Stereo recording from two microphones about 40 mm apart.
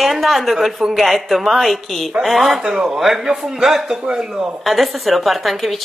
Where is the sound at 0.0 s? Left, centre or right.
Centre.